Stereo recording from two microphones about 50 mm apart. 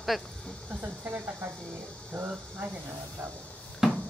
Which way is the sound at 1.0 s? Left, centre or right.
Right.